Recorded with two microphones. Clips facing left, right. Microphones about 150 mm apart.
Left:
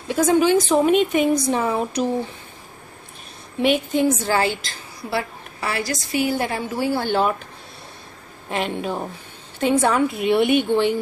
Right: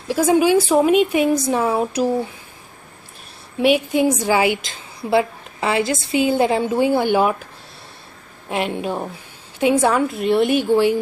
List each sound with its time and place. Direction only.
0.1 s a woman's voice: 10° right (ahead or behind)
3.5 s a woman's voice: 5° right (ahead or behind)
8.5 s a woman's voice: 5° right (ahead or behind)